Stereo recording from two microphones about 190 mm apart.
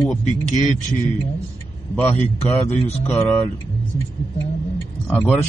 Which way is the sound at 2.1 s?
35° left (ahead or behind).